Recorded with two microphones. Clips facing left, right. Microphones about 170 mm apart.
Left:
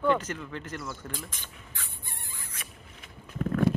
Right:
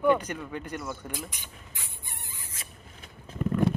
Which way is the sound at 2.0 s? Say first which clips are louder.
Even; 20° right (ahead or behind).